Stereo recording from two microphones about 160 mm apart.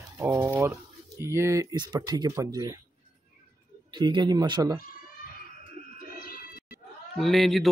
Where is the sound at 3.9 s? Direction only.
30° right (ahead or behind).